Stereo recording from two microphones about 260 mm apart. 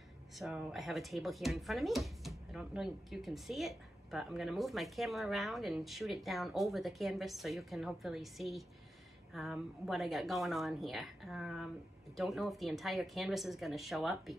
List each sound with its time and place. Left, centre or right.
0.4 s speech: centre